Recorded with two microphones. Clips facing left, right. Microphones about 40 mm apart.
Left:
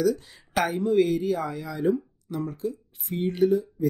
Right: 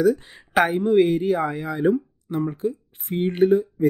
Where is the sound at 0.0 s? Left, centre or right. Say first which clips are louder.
Right 5 dB; right.